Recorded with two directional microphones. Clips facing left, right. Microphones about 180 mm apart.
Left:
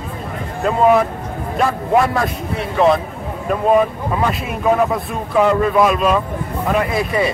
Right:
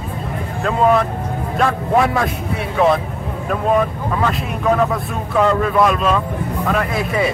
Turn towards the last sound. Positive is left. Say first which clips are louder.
# left 1 dB
turn(degrees=0)  # may be behind; listen again after turning